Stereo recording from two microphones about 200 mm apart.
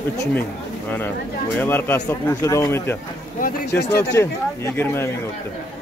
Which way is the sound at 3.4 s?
50° left (ahead or behind).